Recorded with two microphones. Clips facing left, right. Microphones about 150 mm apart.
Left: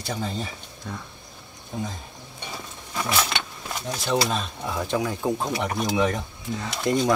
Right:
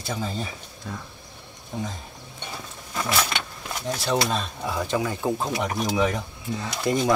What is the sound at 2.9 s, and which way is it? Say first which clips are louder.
Vehicle: even; centre (ahead or behind).